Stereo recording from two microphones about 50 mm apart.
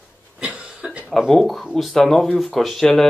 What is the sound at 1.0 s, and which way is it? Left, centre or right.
A man's voice, centre.